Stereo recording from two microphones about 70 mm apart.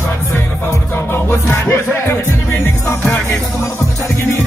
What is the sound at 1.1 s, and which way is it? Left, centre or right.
Music, left.